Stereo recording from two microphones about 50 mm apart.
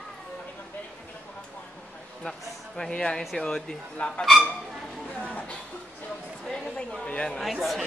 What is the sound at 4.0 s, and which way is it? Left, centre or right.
Speech, left.